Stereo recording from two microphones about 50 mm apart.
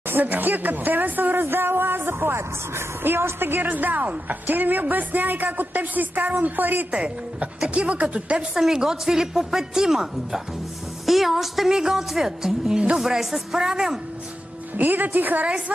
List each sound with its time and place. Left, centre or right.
0.1 s speech: right
3.6 s a woman's voice: right
6.9 s a woman's voice: right
8.5 s a woman's voice: centre
14.8 s a woman's voice: right